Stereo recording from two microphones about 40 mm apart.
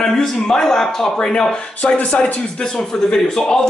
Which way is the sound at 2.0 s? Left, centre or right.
Left.